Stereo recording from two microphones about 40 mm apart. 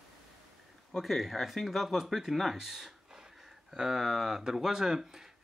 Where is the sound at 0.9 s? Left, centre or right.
Centre.